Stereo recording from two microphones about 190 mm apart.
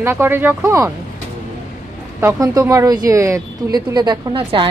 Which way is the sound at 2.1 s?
15° right (ahead or behind).